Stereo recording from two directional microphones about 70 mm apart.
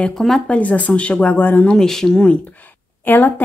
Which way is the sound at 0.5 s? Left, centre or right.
Left.